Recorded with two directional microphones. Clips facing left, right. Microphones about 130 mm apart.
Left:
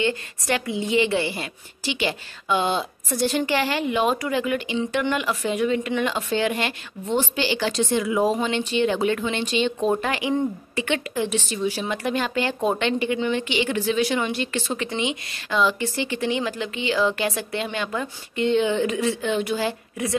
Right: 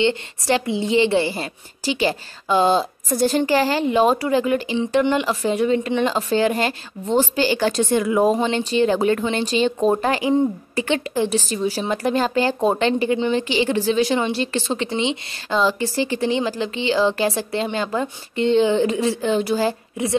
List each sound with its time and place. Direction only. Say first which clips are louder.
0.0 s a woman's voice: right 4 dB; 25° right (ahead or behind); by 8.4 s 50° right (ahead or behind)
8.4 s a woman's voice: right 3 dB; 35° right (ahead or behind)